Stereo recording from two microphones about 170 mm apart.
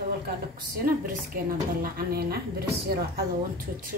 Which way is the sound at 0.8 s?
60° right (ahead or behind).